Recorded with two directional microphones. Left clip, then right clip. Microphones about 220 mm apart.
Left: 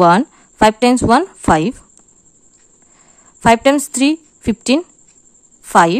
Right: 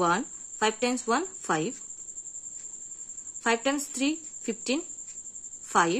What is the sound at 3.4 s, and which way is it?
A woman's voice, 45° left (ahead or behind).